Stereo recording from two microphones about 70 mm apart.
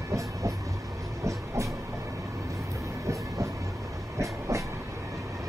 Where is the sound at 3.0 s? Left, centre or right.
Right.